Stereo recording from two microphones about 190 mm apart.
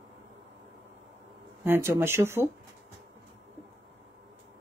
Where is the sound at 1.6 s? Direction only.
15° right (ahead or behind).